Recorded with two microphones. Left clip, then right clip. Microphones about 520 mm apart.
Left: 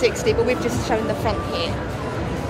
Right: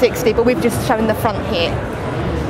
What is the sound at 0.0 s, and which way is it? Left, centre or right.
A woman's voice, right.